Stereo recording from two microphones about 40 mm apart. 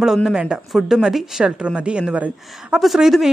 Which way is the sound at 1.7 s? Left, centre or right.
Right.